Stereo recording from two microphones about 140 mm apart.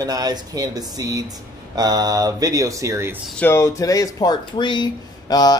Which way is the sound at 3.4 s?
15° left (ahead or behind).